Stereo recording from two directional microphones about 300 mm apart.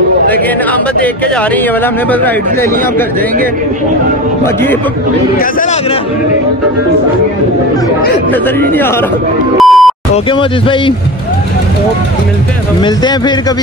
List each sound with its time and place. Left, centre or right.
8.3 s speech: centre
9.6 s beep: centre
10.1 s speech: centre